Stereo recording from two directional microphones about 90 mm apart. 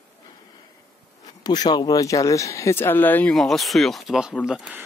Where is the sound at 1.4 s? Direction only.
50° left (ahead or behind); by 3.3 s 20° left (ahead or behind).